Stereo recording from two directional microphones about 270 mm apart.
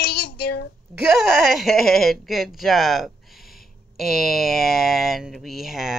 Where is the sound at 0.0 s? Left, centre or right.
Left.